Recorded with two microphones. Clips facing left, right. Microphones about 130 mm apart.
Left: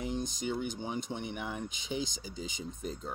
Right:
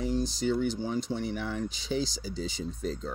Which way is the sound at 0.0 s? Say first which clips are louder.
Right 6 dB; 15° left (ahead or behind).